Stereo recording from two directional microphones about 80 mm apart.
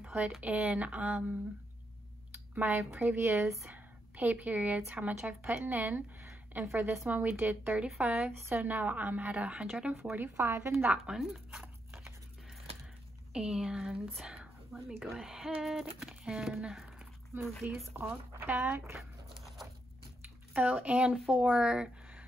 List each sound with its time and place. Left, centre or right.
0.0 s a sound: centre
0.4 s speech: centre
2.9 s a woman's voice: right
8.3 s a woman's voice: right; by 9.9 s centre
10.1 s a woman's voice: right
10.9 s tearing: centre
13.3 s speech: centre
17.9 s a woman's voice: right
18.9 s a sound: centre
20.5 s speech: centre